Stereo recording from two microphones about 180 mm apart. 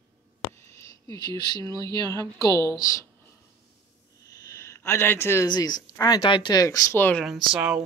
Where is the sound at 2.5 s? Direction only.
20° right (ahead or behind).